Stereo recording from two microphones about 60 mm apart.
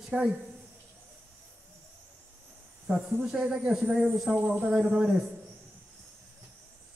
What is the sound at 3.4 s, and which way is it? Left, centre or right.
Speech, right.